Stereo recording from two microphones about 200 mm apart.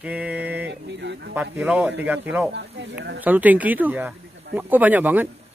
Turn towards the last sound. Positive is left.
turn(degrees=-10)  # may be behind; listen again after turning